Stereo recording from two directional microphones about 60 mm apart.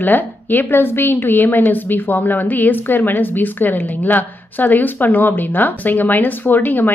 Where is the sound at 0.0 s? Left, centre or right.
Left.